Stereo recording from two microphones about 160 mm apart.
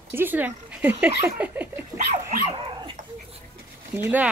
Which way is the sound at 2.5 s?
35° right (ahead or behind).